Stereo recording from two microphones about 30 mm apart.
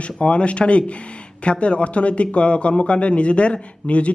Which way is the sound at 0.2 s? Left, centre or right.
Left.